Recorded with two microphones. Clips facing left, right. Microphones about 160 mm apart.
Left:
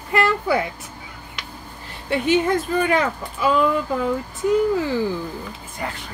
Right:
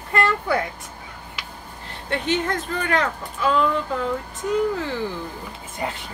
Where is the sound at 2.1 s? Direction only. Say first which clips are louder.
Left 5 dB; 10° left (ahead or behind).